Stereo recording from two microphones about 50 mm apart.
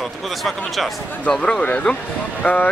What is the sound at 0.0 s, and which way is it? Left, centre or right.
Speech, centre.